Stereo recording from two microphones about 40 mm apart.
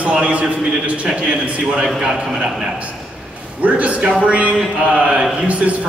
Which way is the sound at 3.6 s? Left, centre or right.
Right.